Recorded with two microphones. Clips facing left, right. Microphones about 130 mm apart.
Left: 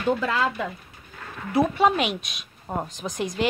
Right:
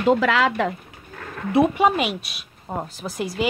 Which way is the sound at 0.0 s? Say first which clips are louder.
Right 5 dB; 90° right.